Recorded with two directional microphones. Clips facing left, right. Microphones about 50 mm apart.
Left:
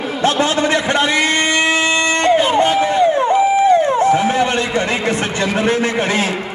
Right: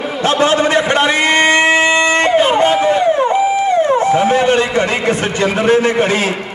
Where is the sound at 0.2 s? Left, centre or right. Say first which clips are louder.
Right 3 dB; right.